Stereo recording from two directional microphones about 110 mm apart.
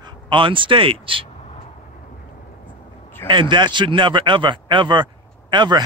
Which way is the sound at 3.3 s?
45° right (ahead or behind).